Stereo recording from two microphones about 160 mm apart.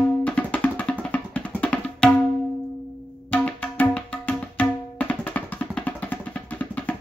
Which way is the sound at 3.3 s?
10° left (ahead or behind).